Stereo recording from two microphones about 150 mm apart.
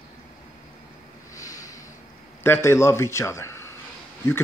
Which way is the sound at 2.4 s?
15° left (ahead or behind).